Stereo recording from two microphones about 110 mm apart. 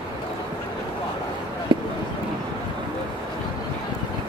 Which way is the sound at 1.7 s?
45° right (ahead or behind).